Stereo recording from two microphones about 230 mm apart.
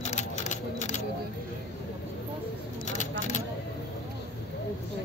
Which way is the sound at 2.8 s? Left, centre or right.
Left.